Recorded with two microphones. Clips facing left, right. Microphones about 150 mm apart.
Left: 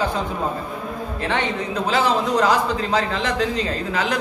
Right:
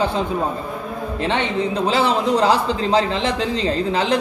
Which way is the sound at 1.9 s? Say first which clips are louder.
Even; 30° right (ahead or behind).